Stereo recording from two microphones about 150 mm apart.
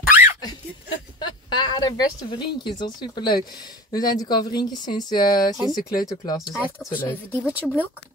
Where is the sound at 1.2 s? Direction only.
30° left (ahead or behind).